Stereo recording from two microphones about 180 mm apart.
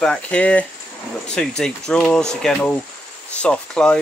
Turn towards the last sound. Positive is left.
turn(degrees=5)  # may be behind; listen again after turning